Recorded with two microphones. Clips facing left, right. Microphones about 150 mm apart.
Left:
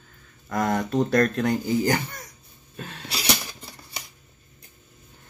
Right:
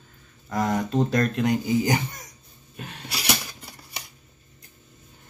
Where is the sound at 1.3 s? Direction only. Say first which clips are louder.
Right 1 dB; 15° right (ahead or behind).